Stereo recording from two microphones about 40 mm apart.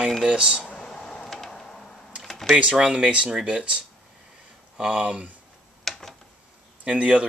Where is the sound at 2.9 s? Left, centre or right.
Right.